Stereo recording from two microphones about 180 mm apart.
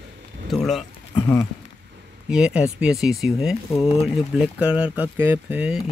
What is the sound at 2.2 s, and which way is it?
Speech, 5° right (ahead or behind).